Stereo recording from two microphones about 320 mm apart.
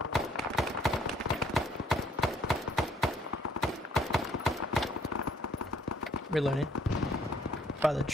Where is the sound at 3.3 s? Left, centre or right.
Left.